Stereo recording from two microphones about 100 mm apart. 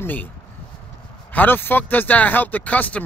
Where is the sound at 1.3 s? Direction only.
20° left (ahead or behind).